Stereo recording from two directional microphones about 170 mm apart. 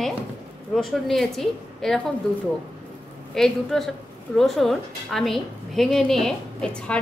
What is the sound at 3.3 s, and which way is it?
A woman's voice, centre (ahead or behind).